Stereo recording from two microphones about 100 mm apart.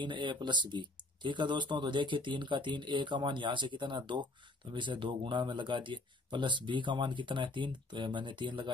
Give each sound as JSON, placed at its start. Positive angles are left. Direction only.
{"t": 0.0, "sound": "speech", "side_deg": -50}